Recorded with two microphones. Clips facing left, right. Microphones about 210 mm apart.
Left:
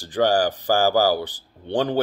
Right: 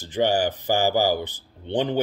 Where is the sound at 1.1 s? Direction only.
20° right (ahead or behind).